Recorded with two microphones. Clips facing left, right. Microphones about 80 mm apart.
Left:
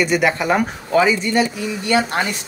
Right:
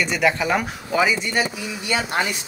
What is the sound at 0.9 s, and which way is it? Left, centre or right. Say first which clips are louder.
Speech: left 4 dB; centre.